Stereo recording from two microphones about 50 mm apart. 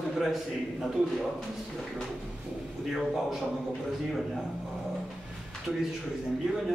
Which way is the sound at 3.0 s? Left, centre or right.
Centre.